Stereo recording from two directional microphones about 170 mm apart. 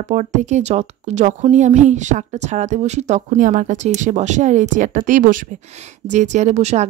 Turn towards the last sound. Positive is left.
turn(degrees=-40)  # may be behind; listen again after turning